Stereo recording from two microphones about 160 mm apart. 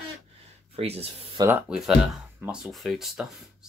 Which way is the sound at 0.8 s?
40° right (ahead or behind).